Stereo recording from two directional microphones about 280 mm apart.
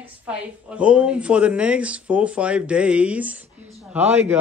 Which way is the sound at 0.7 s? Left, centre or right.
Centre.